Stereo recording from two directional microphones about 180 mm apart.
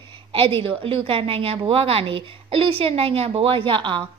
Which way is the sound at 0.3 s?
30° right (ahead or behind).